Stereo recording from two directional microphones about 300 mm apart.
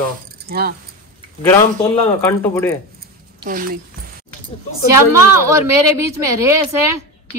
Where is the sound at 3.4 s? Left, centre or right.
Right.